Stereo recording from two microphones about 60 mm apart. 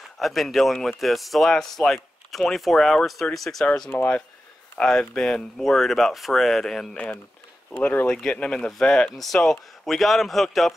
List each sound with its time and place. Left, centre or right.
0.2 s speech: centre
3.9 s speech: left
4.8 s speech: centre
7.8 s speech: left
8.2 s speech: centre